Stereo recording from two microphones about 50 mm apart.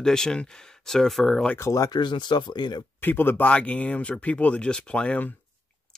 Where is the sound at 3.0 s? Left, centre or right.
Left.